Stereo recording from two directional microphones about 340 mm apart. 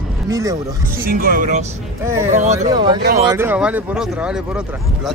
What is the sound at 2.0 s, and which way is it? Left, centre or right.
Speech, centre.